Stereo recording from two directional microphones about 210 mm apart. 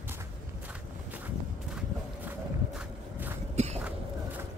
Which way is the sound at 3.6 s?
30° right (ahead or behind).